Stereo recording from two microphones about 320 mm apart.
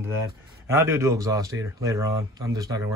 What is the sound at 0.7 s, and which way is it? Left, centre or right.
Speech, centre.